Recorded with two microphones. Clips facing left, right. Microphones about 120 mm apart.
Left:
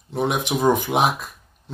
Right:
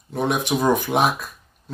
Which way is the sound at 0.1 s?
15° left (ahead or behind).